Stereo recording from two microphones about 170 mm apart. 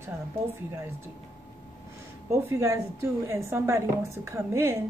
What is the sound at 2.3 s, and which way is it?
A woman's voice, 15° right (ahead or behind).